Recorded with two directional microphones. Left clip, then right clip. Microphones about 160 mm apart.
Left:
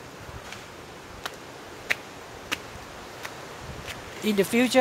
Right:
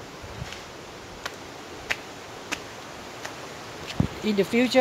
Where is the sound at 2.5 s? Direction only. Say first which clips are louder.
Left 1 dB; 40° left (ahead or behind).